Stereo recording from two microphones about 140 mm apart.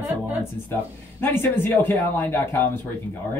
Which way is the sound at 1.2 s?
15° left (ahead or behind).